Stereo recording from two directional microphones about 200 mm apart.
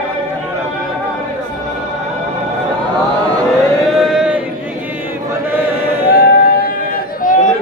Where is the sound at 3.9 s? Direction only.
Centre (ahead or behind).